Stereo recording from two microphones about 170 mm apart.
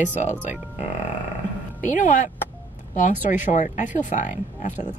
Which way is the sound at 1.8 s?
50° left (ahead or behind).